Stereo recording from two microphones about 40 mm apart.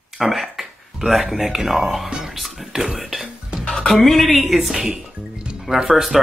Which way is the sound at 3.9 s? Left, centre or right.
Centre.